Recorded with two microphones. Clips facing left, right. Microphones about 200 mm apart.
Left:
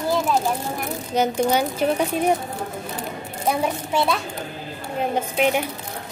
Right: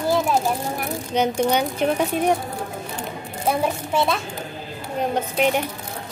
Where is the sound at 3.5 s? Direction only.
Centre (ahead or behind).